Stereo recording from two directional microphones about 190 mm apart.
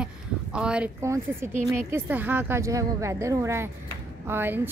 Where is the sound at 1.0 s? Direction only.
15° right (ahead or behind).